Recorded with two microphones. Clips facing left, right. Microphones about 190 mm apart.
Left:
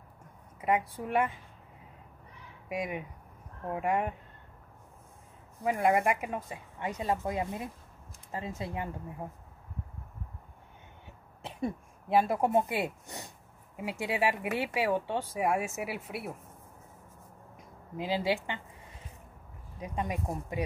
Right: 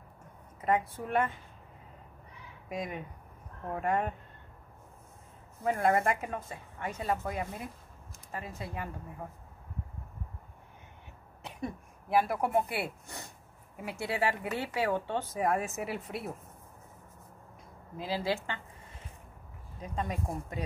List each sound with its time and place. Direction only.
0.6 s speech: 10° left (ahead or behind)
2.7 s speech: 10° left (ahead or behind)
5.6 s speech: 15° left (ahead or behind)
11.4 s speech: 25° left (ahead or behind); by 16.3 s 5° left (ahead or behind)
17.9 s speech: 15° left (ahead or behind)
19.8 s speech: 15° left (ahead or behind)